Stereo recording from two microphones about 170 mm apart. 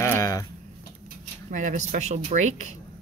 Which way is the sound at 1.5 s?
45° right (ahead or behind).